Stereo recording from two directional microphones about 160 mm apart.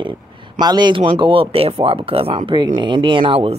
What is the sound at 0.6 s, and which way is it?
Speech, 25° right (ahead or behind).